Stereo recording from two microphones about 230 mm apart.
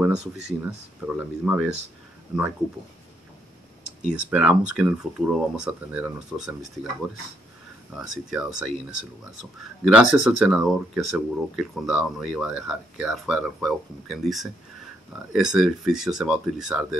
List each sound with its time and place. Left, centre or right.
0.2 s speech: right
1.0 s speech: centre
4.0 s speech: centre
8.0 s speech: centre